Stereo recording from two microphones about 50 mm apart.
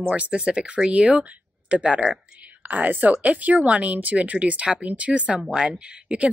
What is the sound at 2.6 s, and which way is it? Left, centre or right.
Speech, right.